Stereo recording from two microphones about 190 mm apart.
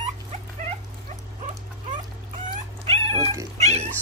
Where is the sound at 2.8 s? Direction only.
30° right (ahead or behind).